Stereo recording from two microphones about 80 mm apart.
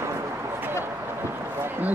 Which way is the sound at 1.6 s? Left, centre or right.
Right.